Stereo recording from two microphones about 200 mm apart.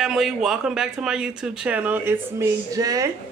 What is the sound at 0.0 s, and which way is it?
Speech, centre (ahead or behind).